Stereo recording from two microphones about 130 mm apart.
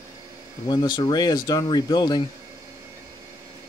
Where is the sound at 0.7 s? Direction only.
35° left (ahead or behind).